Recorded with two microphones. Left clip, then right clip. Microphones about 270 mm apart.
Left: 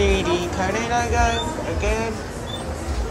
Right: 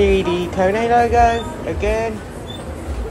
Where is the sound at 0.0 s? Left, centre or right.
Centre.